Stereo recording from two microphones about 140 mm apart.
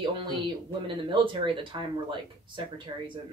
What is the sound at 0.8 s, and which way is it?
Speech, 35° right (ahead or behind).